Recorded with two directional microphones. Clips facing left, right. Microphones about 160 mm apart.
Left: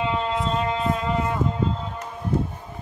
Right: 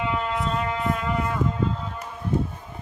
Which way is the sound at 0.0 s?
25° left (ahead or behind).